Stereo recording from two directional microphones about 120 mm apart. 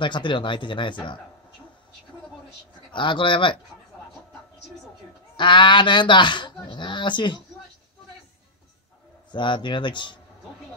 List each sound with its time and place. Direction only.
0.0 s speech: 40° left (ahead or behind)
2.9 s speech: 40° left (ahead or behind)
5.3 s speech: 40° left (ahead or behind)
9.3 s a man's voice: 40° left (ahead or behind)